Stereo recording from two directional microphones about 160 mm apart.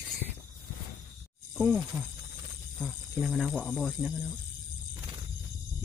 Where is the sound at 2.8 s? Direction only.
Centre (ahead or behind).